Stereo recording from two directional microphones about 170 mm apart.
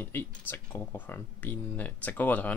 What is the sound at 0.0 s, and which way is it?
Speech, 10° left (ahead or behind).